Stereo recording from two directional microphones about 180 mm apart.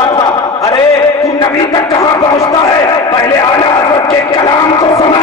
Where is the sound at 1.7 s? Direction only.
20° left (ahead or behind).